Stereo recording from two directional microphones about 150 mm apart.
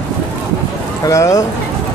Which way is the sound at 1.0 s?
20° left (ahead or behind).